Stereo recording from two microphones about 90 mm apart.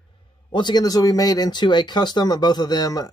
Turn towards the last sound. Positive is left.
turn(degrees=45)  # may be behind; listen again after turning